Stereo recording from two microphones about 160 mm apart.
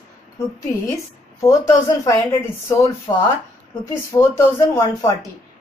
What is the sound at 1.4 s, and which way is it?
Speech, 20° left (ahead or behind).